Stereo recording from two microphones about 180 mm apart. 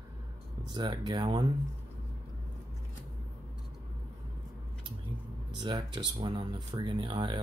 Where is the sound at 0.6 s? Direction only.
25° right (ahead or behind).